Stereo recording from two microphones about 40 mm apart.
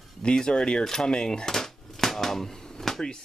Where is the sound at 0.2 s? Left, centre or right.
Centre.